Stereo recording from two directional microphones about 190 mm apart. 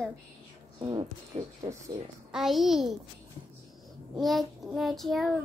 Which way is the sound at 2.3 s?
Centre (ahead or behind).